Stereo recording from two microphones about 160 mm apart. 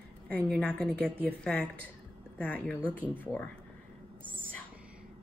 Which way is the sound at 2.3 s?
10° left (ahead or behind).